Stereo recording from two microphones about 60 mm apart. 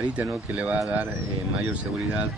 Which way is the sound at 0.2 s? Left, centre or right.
Right.